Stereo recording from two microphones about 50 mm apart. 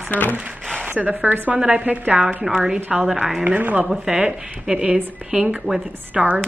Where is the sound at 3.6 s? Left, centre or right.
Right.